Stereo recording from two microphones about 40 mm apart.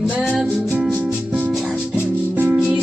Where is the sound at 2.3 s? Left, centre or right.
Right.